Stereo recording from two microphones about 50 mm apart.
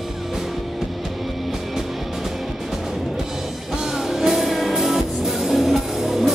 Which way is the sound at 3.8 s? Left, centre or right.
Centre.